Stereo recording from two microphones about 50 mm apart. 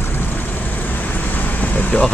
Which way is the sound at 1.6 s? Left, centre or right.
Left.